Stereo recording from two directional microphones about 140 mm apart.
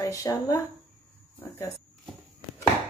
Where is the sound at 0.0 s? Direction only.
25° left (ahead or behind).